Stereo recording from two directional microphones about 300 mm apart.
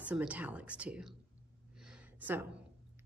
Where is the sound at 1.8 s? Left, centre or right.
Centre.